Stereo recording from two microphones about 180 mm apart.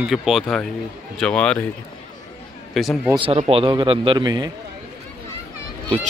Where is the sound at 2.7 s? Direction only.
Centre (ahead or behind).